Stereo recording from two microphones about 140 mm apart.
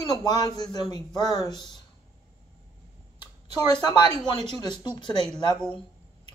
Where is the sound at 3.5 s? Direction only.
30° left (ahead or behind).